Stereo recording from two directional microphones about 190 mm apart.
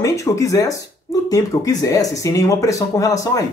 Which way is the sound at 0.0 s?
15° left (ahead or behind).